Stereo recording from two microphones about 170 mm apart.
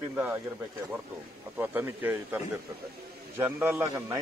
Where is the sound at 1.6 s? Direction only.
10° right (ahead or behind).